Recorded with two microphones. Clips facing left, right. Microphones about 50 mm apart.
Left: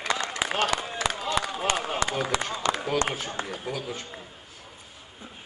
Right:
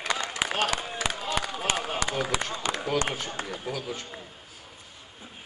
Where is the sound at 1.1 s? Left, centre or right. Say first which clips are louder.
Left 3 dB; right.